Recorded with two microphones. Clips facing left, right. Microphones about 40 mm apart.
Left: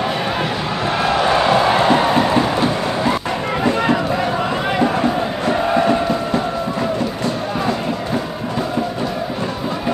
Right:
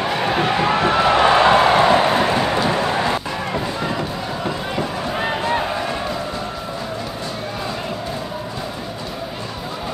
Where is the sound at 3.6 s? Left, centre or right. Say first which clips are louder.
Left 7 dB; left.